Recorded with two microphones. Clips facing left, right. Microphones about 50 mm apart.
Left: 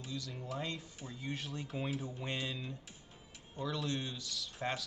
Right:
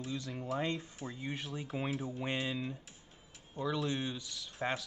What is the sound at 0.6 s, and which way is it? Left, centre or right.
Speech, right.